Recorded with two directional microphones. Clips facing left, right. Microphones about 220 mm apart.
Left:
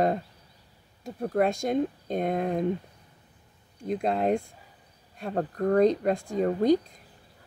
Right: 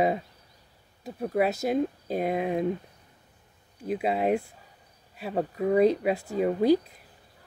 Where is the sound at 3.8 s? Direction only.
5° right (ahead or behind).